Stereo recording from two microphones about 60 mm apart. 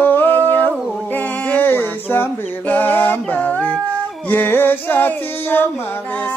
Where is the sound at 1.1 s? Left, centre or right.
Left.